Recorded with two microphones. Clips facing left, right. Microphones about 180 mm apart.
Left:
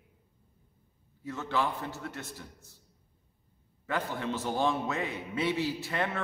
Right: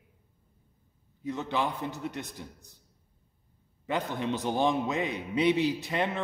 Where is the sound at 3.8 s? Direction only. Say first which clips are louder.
Right 2 dB; 20° right (ahead or behind).